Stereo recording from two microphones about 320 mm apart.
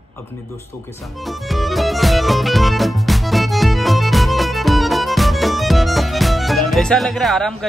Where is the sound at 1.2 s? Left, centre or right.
Centre.